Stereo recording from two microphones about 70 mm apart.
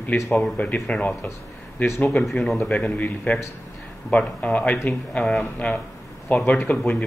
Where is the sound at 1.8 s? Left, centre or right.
Left.